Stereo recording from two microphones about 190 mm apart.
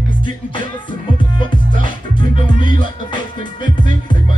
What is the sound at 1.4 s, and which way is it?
Music, 25° left (ahead or behind).